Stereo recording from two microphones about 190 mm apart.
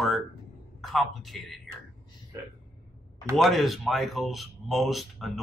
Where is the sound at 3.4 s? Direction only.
Centre (ahead or behind).